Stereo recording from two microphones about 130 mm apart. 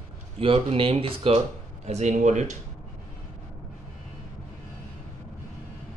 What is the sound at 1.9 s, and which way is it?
Speech, 65° right (ahead or behind).